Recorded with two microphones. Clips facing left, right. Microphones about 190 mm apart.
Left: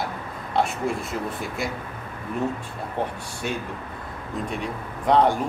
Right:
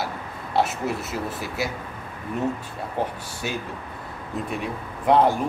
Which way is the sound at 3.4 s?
5° right (ahead or behind).